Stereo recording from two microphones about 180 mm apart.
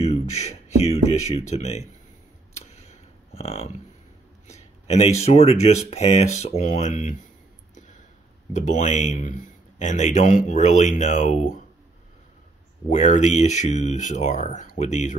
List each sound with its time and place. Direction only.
0.0 s speech: 35° left (ahead or behind)
2.5 s a sound: 35° left (ahead or behind)
5.2 s speech: 35° left (ahead or behind)
8.5 s speech: 40° left (ahead or behind)
12.9 s speech: 40° left (ahead or behind)